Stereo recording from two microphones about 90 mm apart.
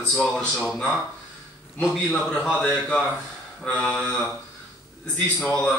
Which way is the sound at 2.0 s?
15° left (ahead or behind).